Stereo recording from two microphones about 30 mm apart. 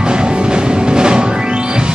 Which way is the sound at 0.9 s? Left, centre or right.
Right.